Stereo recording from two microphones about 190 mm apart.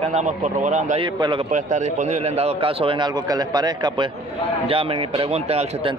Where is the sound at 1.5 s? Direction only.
40° right (ahead or behind).